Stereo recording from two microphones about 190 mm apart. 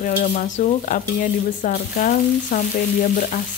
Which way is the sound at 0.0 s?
50° left (ahead or behind).